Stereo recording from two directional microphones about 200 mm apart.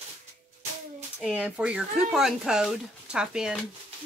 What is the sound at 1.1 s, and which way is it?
Speech, 5° right (ahead or behind).